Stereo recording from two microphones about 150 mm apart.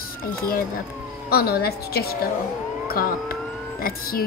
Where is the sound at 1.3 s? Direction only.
90° left.